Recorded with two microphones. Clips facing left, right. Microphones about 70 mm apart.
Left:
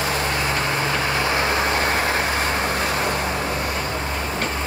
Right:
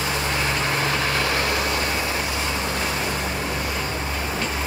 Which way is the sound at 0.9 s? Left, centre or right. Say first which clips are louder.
Left 1 dB; left.